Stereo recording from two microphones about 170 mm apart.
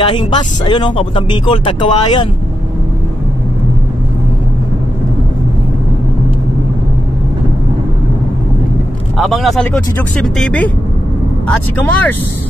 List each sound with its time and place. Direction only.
0.0 s speech: 30° left (ahead or behind)
9.2 s speech: centre (ahead or behind)